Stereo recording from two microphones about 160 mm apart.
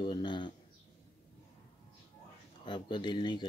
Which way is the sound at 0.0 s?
30° left (ahead or behind).